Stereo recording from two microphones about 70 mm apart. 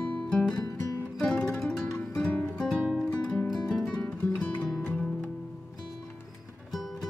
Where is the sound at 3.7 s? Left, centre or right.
Centre.